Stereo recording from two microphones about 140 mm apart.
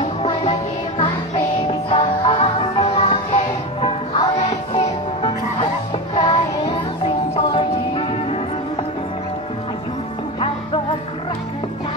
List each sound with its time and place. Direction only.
0.0 s music: 45° left (ahead or behind)
4.4 s music: 50° left (ahead or behind)
6.1 s child singing: 35° left (ahead or behind)
7.3 s music: 40° left (ahead or behind)